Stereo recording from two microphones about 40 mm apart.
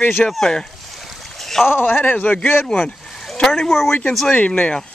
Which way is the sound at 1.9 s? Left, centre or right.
Left.